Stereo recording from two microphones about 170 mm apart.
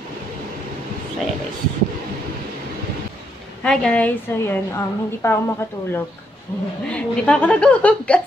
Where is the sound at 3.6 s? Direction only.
5° left (ahead or behind).